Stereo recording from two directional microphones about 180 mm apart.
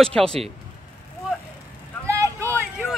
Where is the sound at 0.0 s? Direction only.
5° left (ahead or behind).